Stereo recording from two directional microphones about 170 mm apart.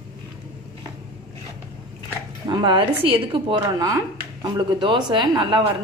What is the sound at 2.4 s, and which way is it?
A woman's voice, 25° right (ahead or behind).